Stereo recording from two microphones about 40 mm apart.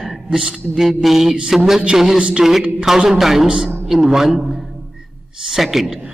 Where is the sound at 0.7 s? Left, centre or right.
Centre.